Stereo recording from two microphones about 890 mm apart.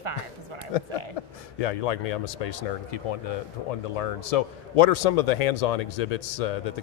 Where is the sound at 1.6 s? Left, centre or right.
Left.